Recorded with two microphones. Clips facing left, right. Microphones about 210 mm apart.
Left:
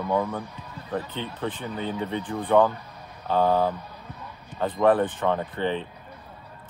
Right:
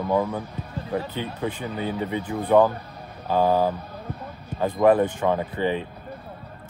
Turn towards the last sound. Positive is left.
turn(degrees=-15)  # may be behind; listen again after turning